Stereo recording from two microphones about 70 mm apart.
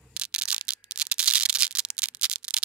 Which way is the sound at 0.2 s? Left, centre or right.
Centre.